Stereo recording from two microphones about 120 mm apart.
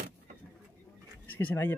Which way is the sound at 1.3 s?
15° left (ahead or behind).